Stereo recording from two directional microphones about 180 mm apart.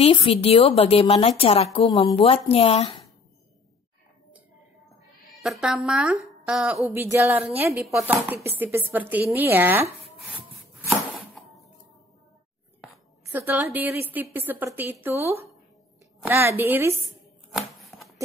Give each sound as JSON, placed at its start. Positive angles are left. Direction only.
{"t": 0.0, "sound": "a woman's voice", "side_deg": 30}
{"t": 5.2, "sound": "a woman's voice", "side_deg": 0}
{"t": 10.3, "sound": "wood", "side_deg": 0}
{"t": 11.1, "sound": "a sound", "side_deg": 0}
{"t": 13.3, "sound": "a woman's voice", "side_deg": -15}
{"t": 17.6, "sound": "shuffling cards", "side_deg": 0}